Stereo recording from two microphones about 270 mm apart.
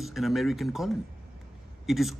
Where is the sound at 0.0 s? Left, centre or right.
Centre.